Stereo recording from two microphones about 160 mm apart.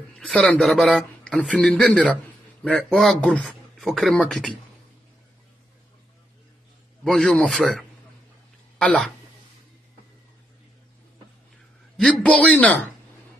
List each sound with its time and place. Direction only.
0.1 s a man's voice: 5° left (ahead or behind)
7.1 s speech: 5° left (ahead or behind)
12.0 s a man's voice: 5° left (ahead or behind)